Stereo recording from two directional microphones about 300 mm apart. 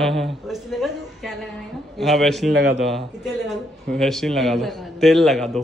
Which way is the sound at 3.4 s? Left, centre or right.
Centre.